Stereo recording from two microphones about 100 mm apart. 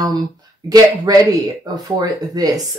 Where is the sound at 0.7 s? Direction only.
40° right (ahead or behind).